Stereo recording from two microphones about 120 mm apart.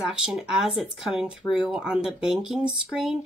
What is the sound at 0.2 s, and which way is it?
Speech, 5° right (ahead or behind).